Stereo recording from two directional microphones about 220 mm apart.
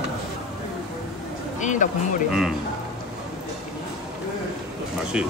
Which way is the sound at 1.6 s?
35° left (ahead or behind).